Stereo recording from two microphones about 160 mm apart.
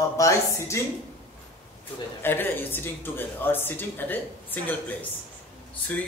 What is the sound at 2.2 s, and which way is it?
Speech, 15° left (ahead or behind).